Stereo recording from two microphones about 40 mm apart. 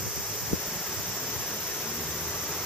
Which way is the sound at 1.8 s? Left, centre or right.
Left.